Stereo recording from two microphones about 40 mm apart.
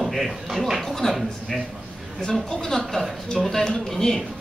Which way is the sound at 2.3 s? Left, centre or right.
Centre.